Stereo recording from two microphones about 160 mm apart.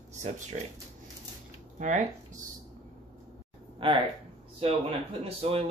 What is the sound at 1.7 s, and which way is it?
Speech, 50° right (ahead or behind).